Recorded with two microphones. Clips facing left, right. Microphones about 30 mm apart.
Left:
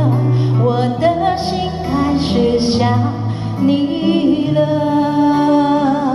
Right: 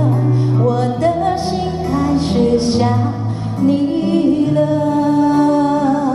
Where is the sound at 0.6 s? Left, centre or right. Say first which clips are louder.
Left 2 dB; left.